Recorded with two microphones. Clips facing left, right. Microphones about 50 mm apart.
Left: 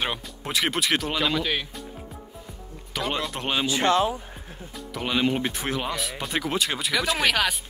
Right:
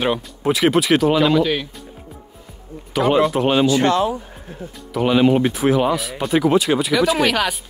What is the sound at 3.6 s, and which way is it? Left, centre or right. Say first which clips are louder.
Speech: right 1 dB; centre.